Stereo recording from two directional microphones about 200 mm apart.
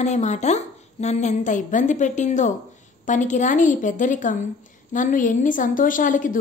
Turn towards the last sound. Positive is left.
turn(degrees=40)  # may be behind; listen again after turning